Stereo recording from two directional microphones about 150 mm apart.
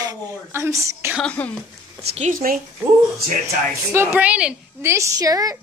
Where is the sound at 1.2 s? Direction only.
10° left (ahead or behind).